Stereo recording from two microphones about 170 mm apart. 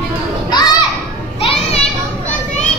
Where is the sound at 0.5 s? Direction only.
25° left (ahead or behind).